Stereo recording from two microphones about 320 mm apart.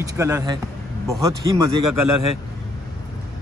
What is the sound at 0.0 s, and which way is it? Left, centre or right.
Speech, centre.